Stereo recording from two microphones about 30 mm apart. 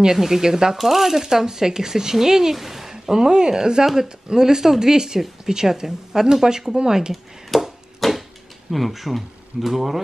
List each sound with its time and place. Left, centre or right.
0.0 s speech: centre
0.7 s speech: centre; by 3.8 s right
3.8 s speech: centre
7.5 s speech: centre
8.0 s a sound: centre
8.7 s speech: centre